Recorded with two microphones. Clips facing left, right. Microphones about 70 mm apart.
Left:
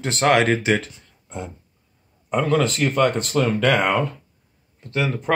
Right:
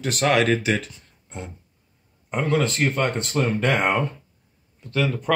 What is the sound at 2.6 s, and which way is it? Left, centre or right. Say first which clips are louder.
Speech: left 3 dB; left.